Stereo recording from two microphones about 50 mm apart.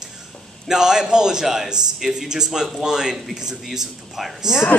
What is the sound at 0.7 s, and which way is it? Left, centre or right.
A man's voice, centre.